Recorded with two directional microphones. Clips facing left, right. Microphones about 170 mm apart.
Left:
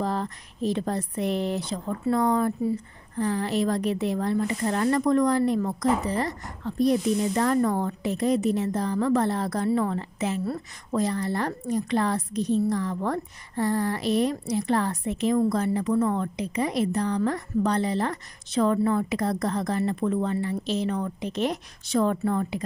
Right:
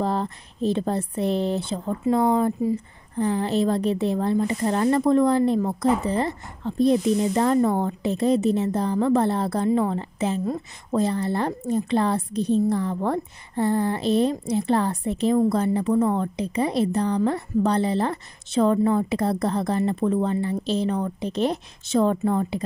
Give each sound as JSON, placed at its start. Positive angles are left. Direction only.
{"t": 0.0, "sound": "a woman's voice", "side_deg": -30}